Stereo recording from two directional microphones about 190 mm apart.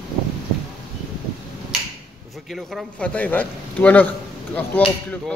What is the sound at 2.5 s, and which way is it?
A man's voice, centre (ahead or behind).